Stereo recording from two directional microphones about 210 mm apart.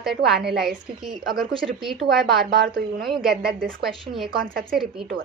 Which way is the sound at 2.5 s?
50° right (ahead or behind).